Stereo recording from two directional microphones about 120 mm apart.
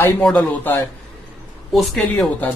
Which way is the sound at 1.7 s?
Centre (ahead or behind).